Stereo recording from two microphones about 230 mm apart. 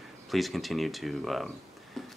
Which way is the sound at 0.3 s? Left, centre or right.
Centre.